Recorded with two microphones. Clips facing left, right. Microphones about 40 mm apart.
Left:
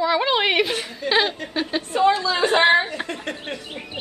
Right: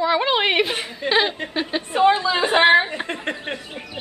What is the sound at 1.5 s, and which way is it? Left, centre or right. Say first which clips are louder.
Speech: even; centre.